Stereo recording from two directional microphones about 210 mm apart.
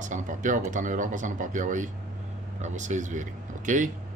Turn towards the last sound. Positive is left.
turn(degrees=-40)  # may be behind; listen again after turning